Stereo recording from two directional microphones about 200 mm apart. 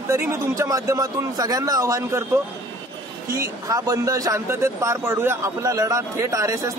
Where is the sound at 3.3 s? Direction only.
15° right (ahead or behind).